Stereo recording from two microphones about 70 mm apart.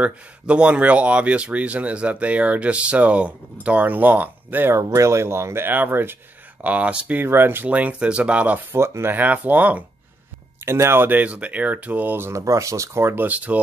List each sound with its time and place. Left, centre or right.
0.0 s speech: centre
4.7 s speech: right
6.6 s speech: right
7.2 s speech: right
7.7 s speech: centre
8.7 s speech: right
9.1 s speech: right
10.6 s speech: right
12.3 s speech: right
13.2 s speech: right